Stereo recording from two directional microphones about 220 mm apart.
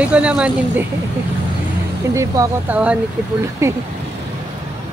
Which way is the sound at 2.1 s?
15° right (ahead or behind).